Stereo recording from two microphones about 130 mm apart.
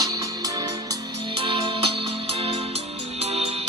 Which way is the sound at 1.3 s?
45° right (ahead or behind).